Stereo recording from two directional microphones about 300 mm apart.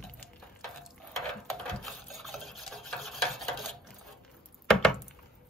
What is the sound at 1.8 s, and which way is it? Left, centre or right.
Rub, centre.